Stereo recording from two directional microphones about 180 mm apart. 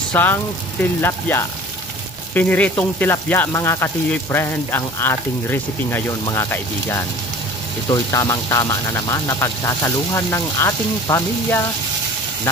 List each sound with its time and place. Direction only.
0.1 s speech: 10° left (ahead or behind)
1.3 s frying: 10° left (ahead or behind)
7.9 s speech: 20° left (ahead or behind)